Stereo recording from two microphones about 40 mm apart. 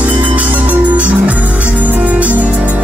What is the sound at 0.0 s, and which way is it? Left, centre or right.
Music, right.